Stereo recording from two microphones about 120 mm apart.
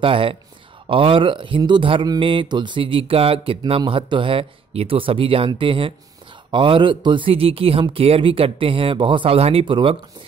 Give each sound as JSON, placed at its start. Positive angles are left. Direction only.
{"t": 0.0, "sound": "speech", "side_deg": -50}